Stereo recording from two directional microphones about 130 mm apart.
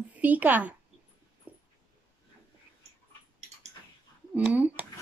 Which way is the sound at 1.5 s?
15° right (ahead or behind).